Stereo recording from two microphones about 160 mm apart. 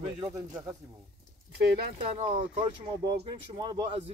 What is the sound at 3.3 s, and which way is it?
Speech, 30° right (ahead or behind).